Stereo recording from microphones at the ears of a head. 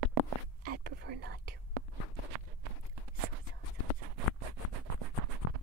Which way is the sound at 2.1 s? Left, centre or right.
Right.